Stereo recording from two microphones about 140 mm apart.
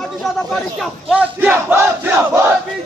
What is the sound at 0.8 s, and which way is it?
Crowd, 5° right (ahead or behind).